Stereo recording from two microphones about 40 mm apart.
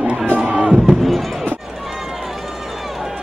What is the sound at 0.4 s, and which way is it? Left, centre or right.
Beatboxing, right.